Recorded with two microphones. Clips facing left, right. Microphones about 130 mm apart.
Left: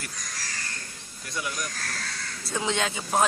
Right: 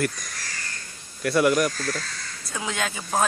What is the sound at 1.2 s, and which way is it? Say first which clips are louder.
Speech: right 14 dB; 70° right (ahead or behind).